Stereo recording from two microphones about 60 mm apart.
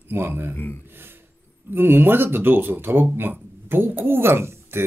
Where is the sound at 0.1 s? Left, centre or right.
Right.